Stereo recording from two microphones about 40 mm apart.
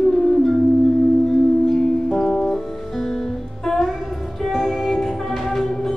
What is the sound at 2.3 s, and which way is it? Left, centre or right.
Music, centre.